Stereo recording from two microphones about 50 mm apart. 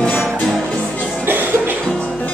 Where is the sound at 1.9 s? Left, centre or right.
Left.